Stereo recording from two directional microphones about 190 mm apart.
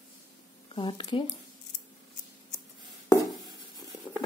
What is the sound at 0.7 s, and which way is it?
Speech, 25° left (ahead or behind).